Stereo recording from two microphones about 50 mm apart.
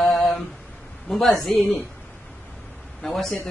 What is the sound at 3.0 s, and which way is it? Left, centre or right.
Mantra, centre.